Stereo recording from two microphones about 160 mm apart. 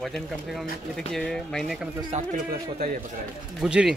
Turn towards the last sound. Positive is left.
turn(degrees=-5)  # may be behind; listen again after turning